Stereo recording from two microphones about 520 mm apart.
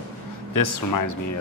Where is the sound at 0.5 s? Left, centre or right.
Left.